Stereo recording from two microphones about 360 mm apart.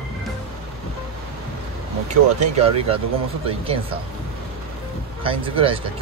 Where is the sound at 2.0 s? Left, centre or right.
Centre.